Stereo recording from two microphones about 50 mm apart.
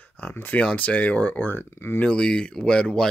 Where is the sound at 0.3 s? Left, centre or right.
Left.